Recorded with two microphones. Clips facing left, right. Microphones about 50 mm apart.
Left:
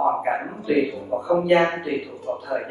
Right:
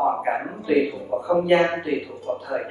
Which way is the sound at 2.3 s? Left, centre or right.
Centre.